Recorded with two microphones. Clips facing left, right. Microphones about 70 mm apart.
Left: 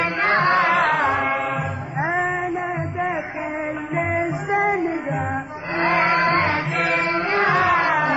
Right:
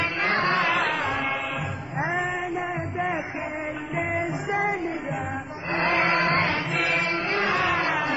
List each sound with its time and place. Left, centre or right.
0.0 s music: left
4.3 s music: left
5.8 s chant: left